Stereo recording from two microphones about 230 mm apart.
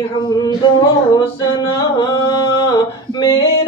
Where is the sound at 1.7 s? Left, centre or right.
Centre.